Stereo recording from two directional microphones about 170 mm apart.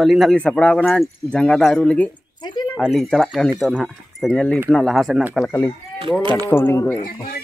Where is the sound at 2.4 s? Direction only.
25° left (ahead or behind).